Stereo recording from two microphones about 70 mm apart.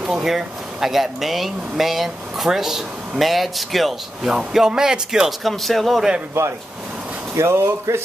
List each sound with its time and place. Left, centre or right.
0.0 s speech: centre
5.4 s speech: centre
7.3 s speech: right